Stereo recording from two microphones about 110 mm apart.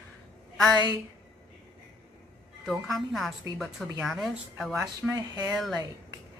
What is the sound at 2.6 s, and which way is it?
A woman's voice, centre (ahead or behind).